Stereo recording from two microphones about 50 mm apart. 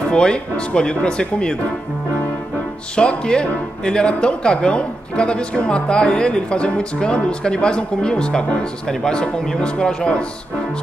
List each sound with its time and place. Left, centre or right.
0.1 s speech: centre
3.0 s speech: centre